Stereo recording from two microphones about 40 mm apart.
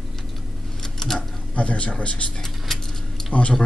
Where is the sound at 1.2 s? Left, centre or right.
Left.